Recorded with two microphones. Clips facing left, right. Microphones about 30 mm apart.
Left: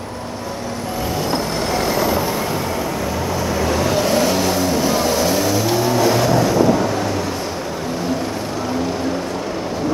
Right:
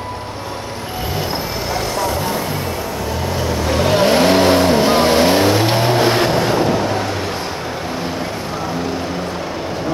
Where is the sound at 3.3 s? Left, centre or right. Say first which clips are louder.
Right 1 dB; right.